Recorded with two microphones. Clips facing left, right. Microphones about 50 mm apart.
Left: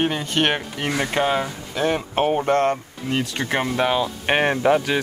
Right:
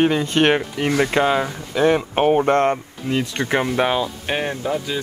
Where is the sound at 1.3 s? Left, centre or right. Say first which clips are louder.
Right 3 dB; centre.